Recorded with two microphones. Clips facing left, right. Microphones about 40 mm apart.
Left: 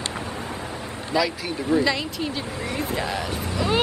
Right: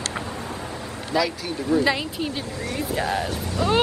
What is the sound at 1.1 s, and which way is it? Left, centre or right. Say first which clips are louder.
Speech: even; centre.